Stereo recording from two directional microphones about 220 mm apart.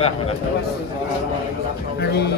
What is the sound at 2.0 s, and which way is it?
Speech, 50° left (ahead or behind).